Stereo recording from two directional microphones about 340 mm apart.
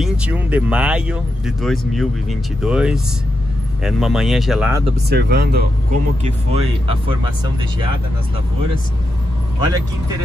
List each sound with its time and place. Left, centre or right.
0.0 s speech: centre
5.1 s speech: right